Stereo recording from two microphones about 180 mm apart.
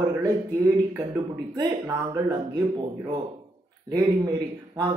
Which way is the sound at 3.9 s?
20° right (ahead or behind).